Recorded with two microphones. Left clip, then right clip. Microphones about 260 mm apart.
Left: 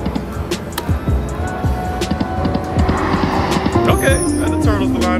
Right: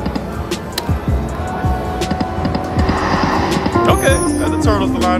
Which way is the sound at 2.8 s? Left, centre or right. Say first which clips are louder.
Right 2 dB; centre.